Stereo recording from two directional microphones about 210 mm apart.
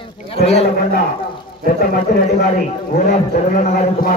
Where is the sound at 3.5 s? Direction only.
40° left (ahead or behind).